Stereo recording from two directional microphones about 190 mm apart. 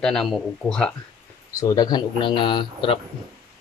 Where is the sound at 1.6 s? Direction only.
20° left (ahead or behind).